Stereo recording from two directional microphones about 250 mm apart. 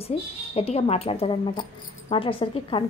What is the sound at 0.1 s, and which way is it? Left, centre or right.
A woman's voice, left.